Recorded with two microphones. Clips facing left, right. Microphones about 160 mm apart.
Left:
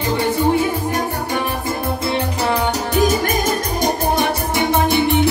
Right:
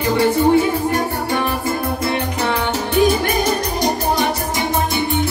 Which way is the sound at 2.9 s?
45° left (ahead or behind).